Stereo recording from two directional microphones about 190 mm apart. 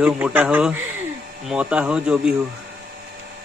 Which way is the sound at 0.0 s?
10° right (ahead or behind).